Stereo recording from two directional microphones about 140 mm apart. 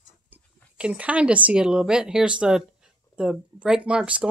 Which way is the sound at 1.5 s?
5° right (ahead or behind).